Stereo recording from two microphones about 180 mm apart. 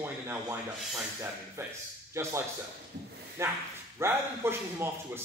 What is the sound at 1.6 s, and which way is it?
Speech, 15° right (ahead or behind).